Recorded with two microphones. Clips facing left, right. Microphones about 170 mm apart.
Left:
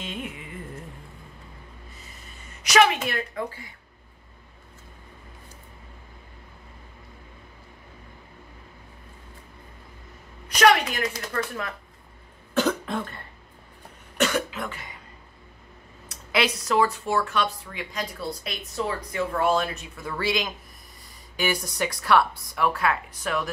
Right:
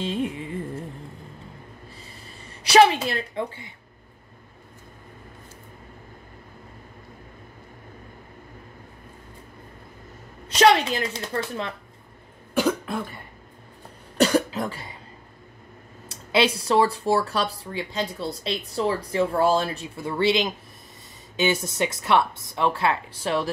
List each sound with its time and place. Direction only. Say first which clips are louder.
0.0 s carnatic music: right 8 dB; 30° right (ahead or behind)
2.0 s a sound: right 3 dB; 30° right (ahead or behind)
10.5 s speech: right 2 dB; 25° right (ahead or behind)
12.5 s cough: right 1 dB; 5° right (ahead or behind)
14.1 s cough: right 5 dB; 35° right (ahead or behind)
16.1 s speech: right 4 dB; 30° right (ahead or behind)